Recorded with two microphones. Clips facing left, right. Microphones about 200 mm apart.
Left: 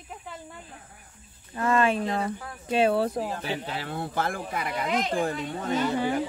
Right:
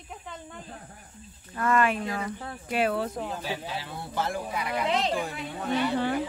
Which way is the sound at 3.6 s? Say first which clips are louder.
Left 4 dB; 55° left (ahead or behind).